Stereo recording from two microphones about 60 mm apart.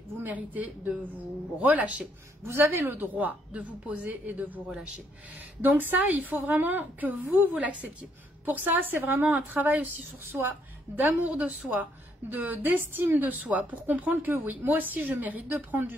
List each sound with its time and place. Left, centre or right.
0.2 s a woman's voice: right
2.7 s a woman's voice: right
3.2 s a woman's voice: right
5.6 s a woman's voice: right
11.0 s a woman's voice: right